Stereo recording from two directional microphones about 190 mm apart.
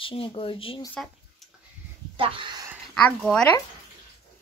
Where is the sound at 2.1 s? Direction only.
25° right (ahead or behind).